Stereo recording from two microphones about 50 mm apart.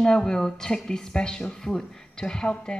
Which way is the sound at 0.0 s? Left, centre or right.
Centre.